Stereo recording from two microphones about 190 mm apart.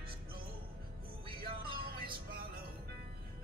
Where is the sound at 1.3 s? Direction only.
55° right (ahead or behind).